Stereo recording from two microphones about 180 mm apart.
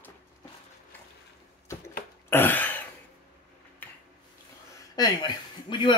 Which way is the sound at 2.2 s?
10° left (ahead or behind).